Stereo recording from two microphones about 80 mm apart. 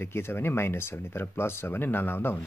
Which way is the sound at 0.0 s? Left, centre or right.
Left.